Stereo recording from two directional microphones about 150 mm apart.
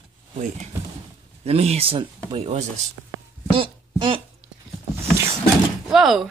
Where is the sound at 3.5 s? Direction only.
35° right (ahead or behind).